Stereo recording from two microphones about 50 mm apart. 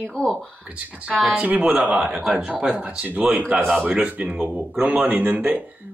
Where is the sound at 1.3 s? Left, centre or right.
Right.